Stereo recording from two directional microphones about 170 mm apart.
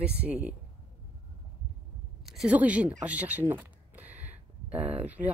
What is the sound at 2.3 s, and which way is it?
Speech, 5° right (ahead or behind).